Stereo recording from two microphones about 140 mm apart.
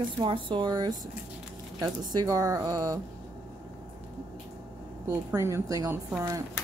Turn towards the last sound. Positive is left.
turn(degrees=-20)  # may be behind; listen again after turning